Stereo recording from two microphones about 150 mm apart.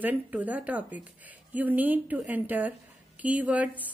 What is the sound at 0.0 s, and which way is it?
Speech, 10° right (ahead or behind).